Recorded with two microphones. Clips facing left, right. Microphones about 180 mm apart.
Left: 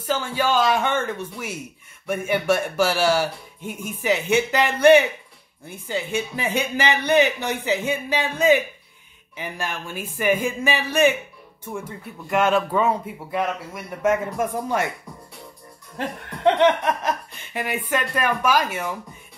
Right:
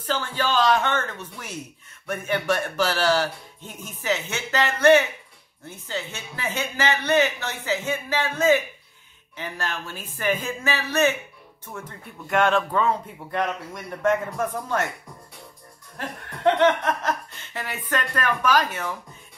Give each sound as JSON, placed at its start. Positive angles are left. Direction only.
{"t": 0.0, "sound": "speech", "side_deg": 10}
{"t": 16.4, "sound": "speech", "side_deg": 15}